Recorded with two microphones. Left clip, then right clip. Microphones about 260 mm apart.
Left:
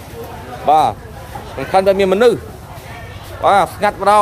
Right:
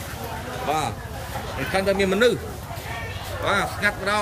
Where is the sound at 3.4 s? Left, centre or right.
Centre.